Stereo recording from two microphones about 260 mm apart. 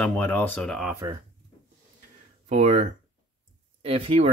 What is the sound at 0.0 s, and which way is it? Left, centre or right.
Speech, centre.